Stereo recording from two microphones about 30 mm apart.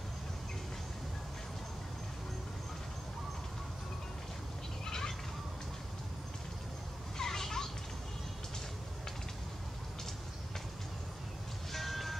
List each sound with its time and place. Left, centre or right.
4.8 s a sound: left
7.2 s children playing: centre
11.7 s vehicle: centre